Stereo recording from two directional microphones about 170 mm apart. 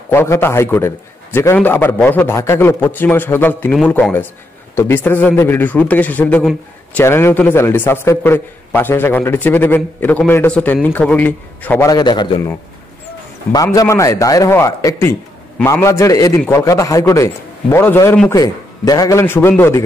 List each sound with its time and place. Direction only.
0.1 s a man's voice: 15° left (ahead or behind)
11.9 s a man's voice: 25° left (ahead or behind)
13.5 s a man's voice: 20° left (ahead or behind)
18.3 s a man's voice: 20° left (ahead or behind)